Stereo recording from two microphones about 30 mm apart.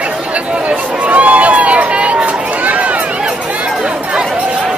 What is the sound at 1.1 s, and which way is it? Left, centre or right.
Run, right.